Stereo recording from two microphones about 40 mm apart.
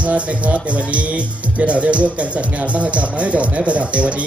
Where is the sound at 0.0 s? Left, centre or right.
Right.